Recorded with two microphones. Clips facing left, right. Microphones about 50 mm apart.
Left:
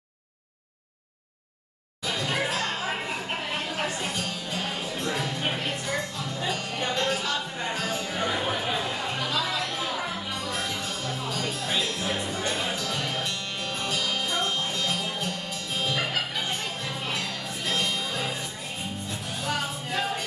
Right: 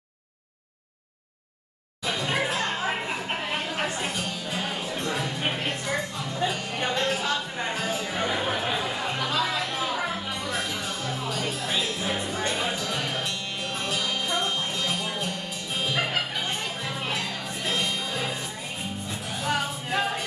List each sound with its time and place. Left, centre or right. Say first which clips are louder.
2.0 s chatter: right 1 dB; centre
4.0 s music: right 1 dB; centre
8.5 s chatter: right 1 dB; centre
9.8 s music: right 2 dB; right
10.3 s music: right 1 dB; centre
19.4 s music: right 3 dB; centre